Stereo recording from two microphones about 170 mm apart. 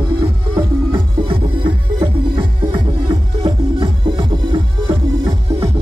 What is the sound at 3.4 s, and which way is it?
Music, 30° right (ahead or behind).